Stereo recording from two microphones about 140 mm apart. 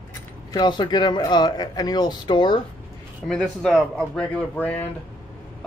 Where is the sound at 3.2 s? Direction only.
5° left (ahead or behind).